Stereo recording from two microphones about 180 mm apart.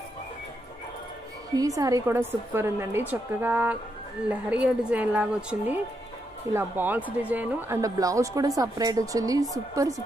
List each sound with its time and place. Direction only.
1.8 s a woman's voice: 20° right (ahead or behind)